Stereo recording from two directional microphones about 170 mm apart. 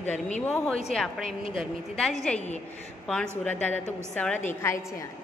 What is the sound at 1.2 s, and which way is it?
Speech, 35° left (ahead or behind).